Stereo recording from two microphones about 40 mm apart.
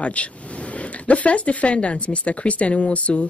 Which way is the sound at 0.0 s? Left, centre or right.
Left.